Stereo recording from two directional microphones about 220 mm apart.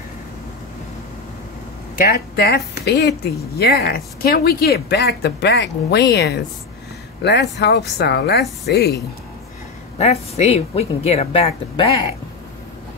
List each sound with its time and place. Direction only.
2.0 s speech: 45° left (ahead or behind)
9.9 s a woman's voice: 30° left (ahead or behind)